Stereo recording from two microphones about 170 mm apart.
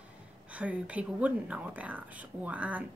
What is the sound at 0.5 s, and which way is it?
Speech, 10° right (ahead or behind).